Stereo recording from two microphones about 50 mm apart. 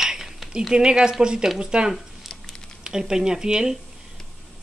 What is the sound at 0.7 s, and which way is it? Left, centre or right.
Speech, centre.